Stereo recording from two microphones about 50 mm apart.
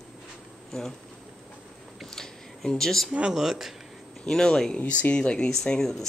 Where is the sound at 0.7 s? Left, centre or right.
Centre.